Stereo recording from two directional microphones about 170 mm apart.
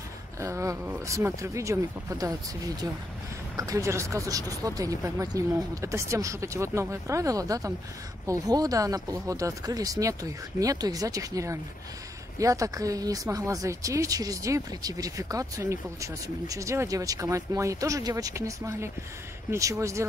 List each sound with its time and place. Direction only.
0.4 s speech: 15° right (ahead or behind)